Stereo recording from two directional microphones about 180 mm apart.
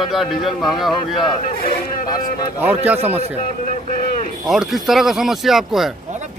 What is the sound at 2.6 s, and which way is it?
Speech, 10° right (ahead or behind).